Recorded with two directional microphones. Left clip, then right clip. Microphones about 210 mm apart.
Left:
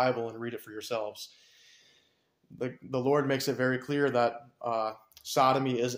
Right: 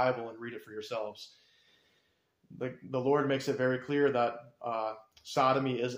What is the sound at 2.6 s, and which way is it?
Speech, 35° left (ahead or behind).